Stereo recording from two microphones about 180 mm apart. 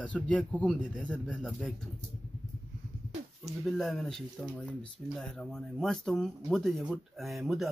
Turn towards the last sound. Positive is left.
turn(degrees=0)  # may be behind; listen again after turning